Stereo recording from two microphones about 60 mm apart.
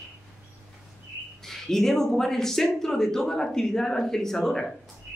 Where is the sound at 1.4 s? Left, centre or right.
Centre.